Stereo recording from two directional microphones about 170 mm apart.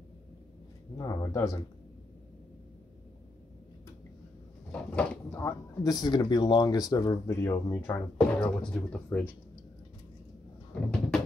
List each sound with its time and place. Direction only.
0.9 s speech: 20° left (ahead or behind)
4.7 s speech: 10° left (ahead or behind)
8.4 s speech: 5° left (ahead or behind)
10.7 s cupboard open or close: 5° left (ahead or behind)